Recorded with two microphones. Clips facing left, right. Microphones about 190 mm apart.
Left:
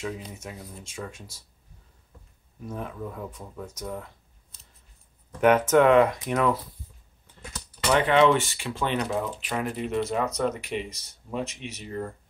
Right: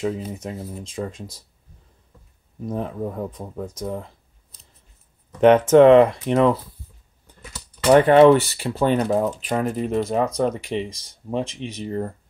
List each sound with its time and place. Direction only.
0.3 s speech: 35° right (ahead or behind)
2.6 s speech: 35° right (ahead or behind)
5.4 s speech: 30° right (ahead or behind)
7.9 s speech: 45° right (ahead or behind)